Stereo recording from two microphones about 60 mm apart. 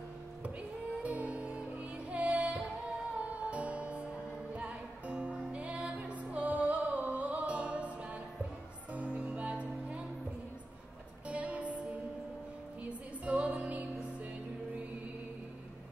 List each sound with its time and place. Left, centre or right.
1.0 s music: right
11.2 s music: right
13.2 s music: right